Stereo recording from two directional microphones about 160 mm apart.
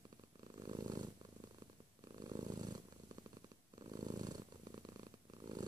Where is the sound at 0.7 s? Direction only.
25° right (ahead or behind).